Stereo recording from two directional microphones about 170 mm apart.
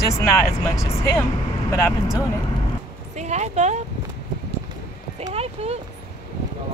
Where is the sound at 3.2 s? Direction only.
40° right (ahead or behind).